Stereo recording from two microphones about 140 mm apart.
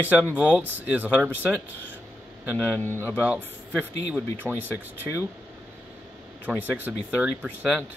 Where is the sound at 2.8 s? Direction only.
15° left (ahead or behind).